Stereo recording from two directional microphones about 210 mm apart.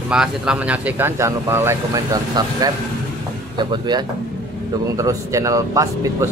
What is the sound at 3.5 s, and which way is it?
Speech, 20° right (ahead or behind).